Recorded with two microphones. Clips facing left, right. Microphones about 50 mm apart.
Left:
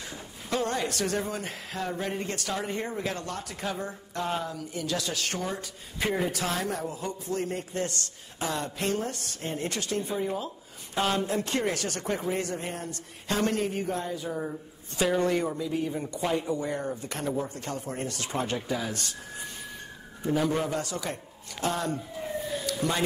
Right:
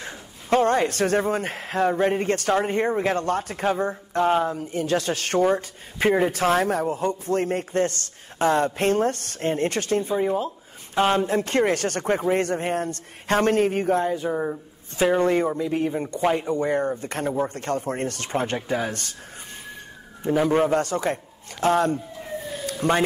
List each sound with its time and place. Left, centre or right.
0.0 s a man's voice: right
10.1 s a man's voice: right
20.2 s a man's voice: right
22.7 s a sound: right